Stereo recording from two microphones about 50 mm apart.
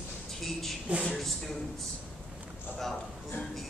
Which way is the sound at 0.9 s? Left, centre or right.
Right.